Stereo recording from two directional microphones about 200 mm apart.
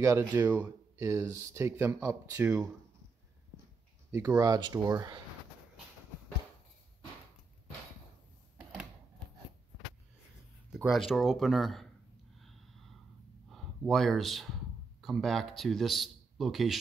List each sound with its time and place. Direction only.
0.0 s speech: 10° right (ahead or behind)
4.1 s speech: 15° right (ahead or behind)
10.7 s speech: centre (ahead or behind)
12.4 s gasp: centre (ahead or behind)
13.5 s speech: centre (ahead or behind)